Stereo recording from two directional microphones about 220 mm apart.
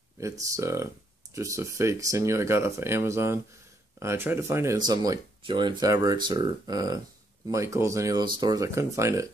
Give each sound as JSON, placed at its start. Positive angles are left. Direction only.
{"t": 0.2, "sound": "speech", "side_deg": -15}